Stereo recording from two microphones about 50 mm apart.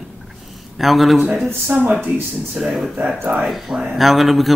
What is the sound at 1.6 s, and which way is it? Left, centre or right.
Speech, right.